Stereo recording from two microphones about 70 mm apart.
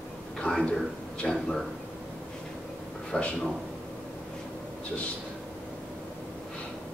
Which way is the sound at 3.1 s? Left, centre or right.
Centre.